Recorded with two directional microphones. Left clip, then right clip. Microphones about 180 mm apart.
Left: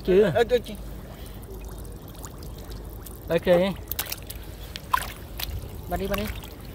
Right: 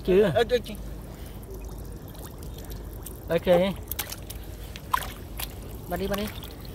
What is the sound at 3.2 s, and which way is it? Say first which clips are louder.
Speech: left 1 dB; 15° left (ahead or behind).